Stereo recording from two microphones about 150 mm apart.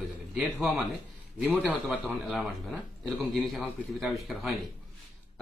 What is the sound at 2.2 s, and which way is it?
A man's voice, centre (ahead or behind).